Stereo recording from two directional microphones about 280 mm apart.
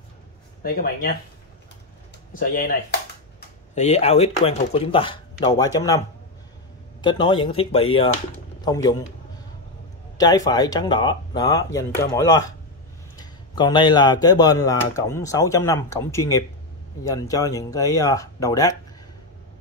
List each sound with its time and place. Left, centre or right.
0.6 s speech: left
2.3 s a sound: left
3.8 s speech: left
10.1 s speech: centre